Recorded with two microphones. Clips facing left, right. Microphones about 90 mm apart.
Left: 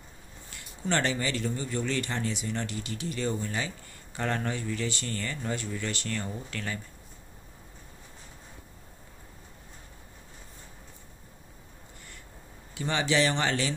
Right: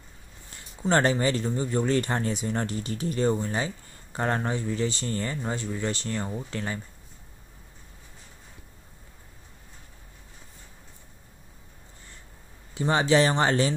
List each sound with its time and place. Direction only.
0.6 s speech: 35° right (ahead or behind)
12.7 s speech: 35° right (ahead or behind)